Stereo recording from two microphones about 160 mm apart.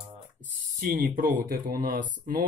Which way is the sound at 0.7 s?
60° right (ahead or behind).